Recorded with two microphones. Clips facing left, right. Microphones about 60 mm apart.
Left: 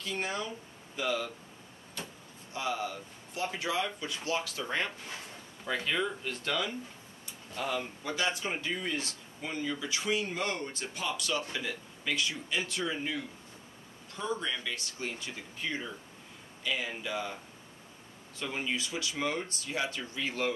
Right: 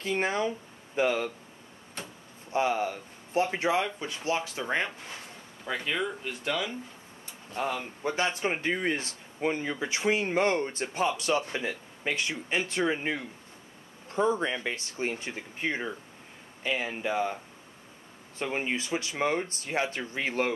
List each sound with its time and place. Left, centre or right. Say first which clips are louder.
0.0 s speech: right 7 dB; right
2.0 s door: right 1 dB; right
2.5 s speech: right 7 dB; right
5.7 s speech: right 1 dB; centre
7.5 s speech: right 3 dB; right
18.4 s speech: right 4 dB; right